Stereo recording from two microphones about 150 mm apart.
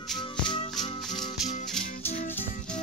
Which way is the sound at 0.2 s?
30° left (ahead or behind).